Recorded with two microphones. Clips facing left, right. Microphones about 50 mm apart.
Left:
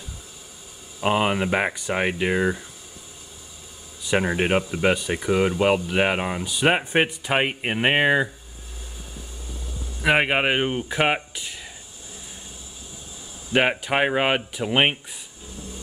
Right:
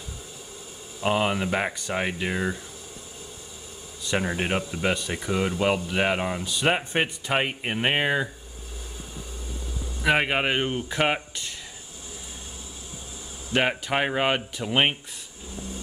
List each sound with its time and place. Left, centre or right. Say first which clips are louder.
1.0 s speech: left 3 dB; centre
4.2 s speech: left 5 dB; centre
4.9 s speech: left 5 dB; centre
10.0 s speech: left 3 dB; centre
13.5 s speech: left 3 dB; centre